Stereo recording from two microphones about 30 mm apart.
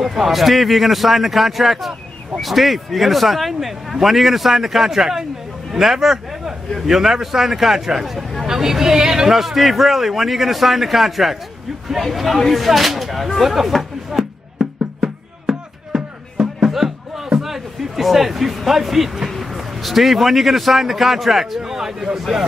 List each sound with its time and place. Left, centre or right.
0.0 s a man's voice: centre
8.5 s a man's voice: centre
9.3 s a man's voice: centre
15.0 s music: right
17.4 s a sound: centre
18.7 s a man's voice: centre